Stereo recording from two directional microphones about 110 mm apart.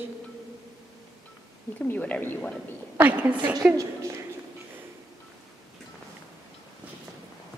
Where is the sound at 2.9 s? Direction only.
15° right (ahead or behind).